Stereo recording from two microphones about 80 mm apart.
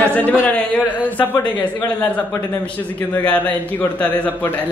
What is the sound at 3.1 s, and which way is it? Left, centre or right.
A man's voice, centre.